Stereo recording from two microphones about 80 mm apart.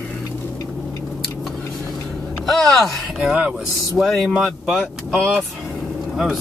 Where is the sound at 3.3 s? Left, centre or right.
Centre.